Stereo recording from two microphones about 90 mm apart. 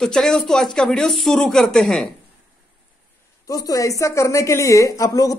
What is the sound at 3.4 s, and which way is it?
Speech, 40° left (ahead or behind).